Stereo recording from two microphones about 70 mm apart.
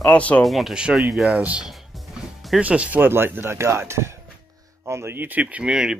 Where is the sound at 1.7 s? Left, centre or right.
Centre.